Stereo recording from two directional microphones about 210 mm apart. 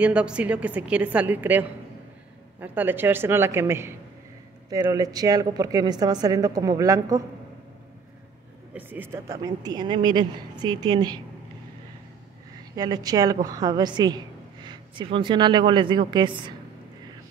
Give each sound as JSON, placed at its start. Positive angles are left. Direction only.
{"t": 0.0, "sound": "a woman's voice", "side_deg": -5}
{"t": 8.7, "sound": "a woman's voice", "side_deg": -10}
{"t": 12.7, "sound": "a woman's voice", "side_deg": -20}